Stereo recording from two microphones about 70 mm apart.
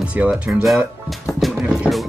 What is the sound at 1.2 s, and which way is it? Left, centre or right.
Music, centre.